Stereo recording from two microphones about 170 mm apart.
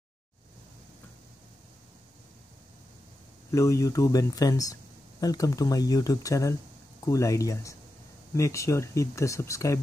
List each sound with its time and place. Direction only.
3.5 s speech: 20° left (ahead or behind)